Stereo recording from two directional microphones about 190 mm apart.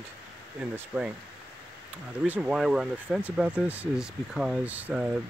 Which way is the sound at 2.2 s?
10° right (ahead or behind).